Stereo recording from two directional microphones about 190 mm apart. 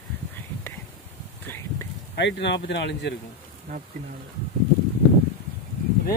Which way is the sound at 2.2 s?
65° left (ahead or behind).